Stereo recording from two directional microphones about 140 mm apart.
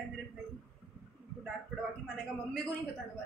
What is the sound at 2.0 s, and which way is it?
Speech, centre (ahead or behind).